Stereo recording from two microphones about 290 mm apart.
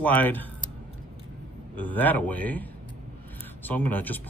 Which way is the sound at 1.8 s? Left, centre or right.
Centre.